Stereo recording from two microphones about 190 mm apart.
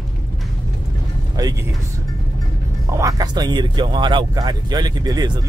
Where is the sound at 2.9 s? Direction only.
15° right (ahead or behind).